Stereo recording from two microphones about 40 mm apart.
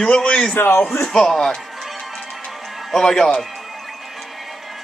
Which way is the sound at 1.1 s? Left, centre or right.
Centre.